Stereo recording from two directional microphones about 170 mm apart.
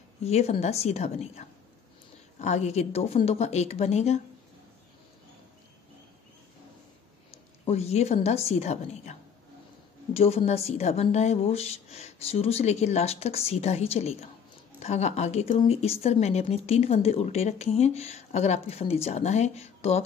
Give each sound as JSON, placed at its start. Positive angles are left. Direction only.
{"t": 0.2, "sound": "a woman's voice", "side_deg": 40}
{"t": 7.6, "sound": "a woman's voice", "side_deg": 40}
{"t": 10.1, "sound": "a woman's voice", "side_deg": 35}